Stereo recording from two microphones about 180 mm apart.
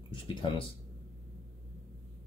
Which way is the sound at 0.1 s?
25° left (ahead or behind).